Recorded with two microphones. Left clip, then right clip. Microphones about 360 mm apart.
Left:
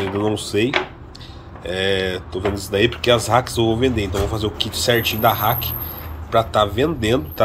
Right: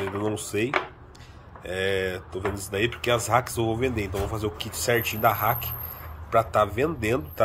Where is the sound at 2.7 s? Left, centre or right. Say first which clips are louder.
Left 9 dB; centre.